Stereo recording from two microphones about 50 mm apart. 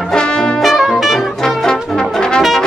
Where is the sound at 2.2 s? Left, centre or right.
Centre.